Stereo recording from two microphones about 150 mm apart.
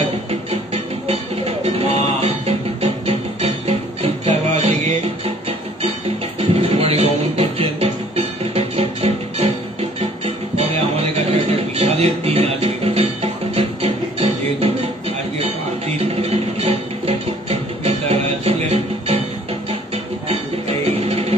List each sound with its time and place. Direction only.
1.0 s music: 40° right (ahead or behind)
5.8 s music: 40° right (ahead or behind)
11.7 s music: 40° right (ahead or behind)
16.0 s music: 45° right (ahead or behind)
20.2 s music: 40° right (ahead or behind)